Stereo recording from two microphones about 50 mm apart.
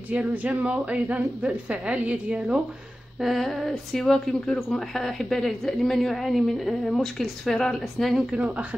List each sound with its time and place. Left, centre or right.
0.1 s a woman's voice: right
3.2 s a woman's voice: centre
8.3 s a woman's voice: right